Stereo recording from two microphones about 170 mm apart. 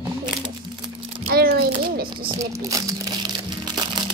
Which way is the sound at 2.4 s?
20° right (ahead or behind).